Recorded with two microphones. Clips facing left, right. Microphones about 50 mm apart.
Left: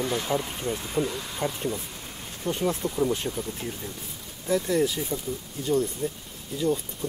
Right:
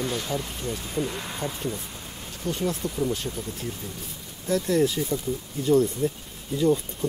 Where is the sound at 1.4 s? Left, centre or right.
Centre.